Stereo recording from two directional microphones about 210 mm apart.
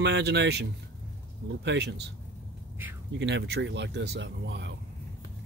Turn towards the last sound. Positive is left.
turn(degrees=-55)  # may be behind; listen again after turning